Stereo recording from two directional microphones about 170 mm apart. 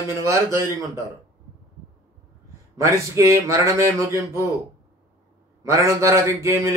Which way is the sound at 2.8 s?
15° right (ahead or behind).